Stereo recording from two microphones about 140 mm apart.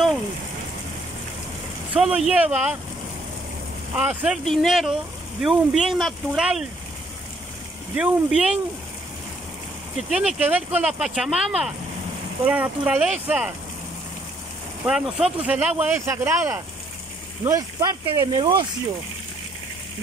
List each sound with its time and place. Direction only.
2.0 s speech: 5° right (ahead or behind)
3.9 s speech: 10° right (ahead or behind)
7.9 s speech: 10° right (ahead or behind)
9.9 s speech: 5° right (ahead or behind)
14.9 s speech: 5° right (ahead or behind); by 18.7 s 35° right (ahead or behind)